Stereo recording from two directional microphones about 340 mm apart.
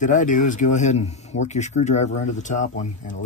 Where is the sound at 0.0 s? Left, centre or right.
Left.